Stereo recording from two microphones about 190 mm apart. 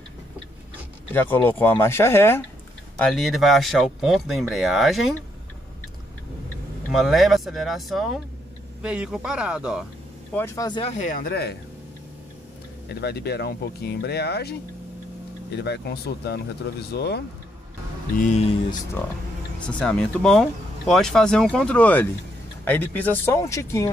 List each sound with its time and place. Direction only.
1.1 s speech: 10° left (ahead or behind)
3.0 s speech: centre (ahead or behind)
6.9 s speech: centre (ahead or behind)
10.3 s speech: 15° left (ahead or behind)
10.8 s speech: 35° left (ahead or behind); by 11.5 s 55° left (ahead or behind)
12.8 s speech: 60° left (ahead or behind)
19.6 s speech: 5° left (ahead or behind)